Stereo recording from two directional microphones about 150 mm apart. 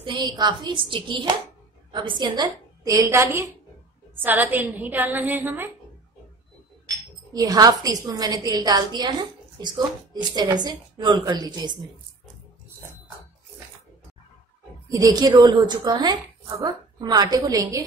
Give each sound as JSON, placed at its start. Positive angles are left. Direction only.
{"t": 0.0, "sound": "a woman's voice", "side_deg": -30}
{"t": 7.3, "sound": "a woman's voice", "side_deg": -25}
{"t": 14.9, "sound": "a woman's voice", "side_deg": -20}